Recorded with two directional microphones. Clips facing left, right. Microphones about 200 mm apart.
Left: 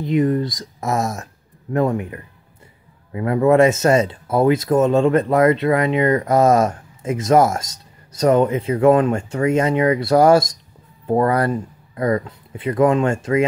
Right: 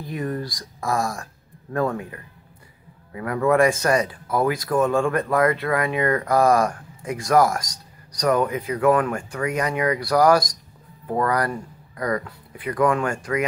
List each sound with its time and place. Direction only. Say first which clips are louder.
0.0 s speech: left 10 dB; 20° left (ahead or behind)